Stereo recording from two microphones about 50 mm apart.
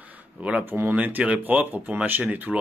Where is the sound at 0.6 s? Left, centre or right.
Right.